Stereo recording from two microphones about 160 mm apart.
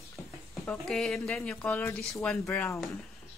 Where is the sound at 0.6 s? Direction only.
5° left (ahead or behind).